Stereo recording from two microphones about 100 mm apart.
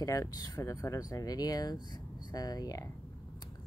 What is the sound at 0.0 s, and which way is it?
Speech, 35° left (ahead or behind).